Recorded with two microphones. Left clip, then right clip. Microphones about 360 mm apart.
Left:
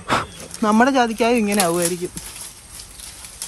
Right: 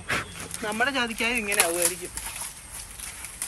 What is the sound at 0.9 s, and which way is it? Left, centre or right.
Speech, centre.